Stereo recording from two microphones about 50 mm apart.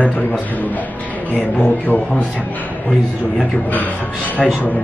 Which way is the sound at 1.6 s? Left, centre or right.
Left.